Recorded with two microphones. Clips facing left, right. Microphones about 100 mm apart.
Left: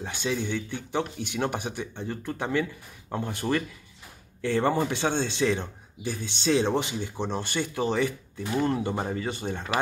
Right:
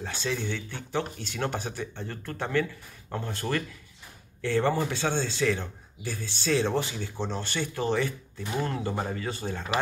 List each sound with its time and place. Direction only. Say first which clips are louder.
0.0 s speech: left 2 dB; 15° left (ahead or behind)